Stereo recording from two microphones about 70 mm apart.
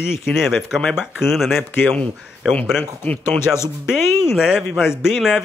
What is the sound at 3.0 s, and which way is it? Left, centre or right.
Speech, left.